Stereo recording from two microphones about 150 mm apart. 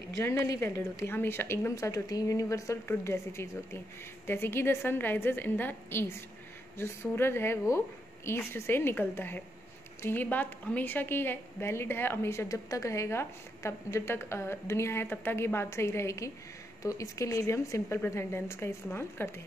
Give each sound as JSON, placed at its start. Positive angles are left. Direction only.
{"t": 0.2, "sound": "a woman's voice", "side_deg": 20}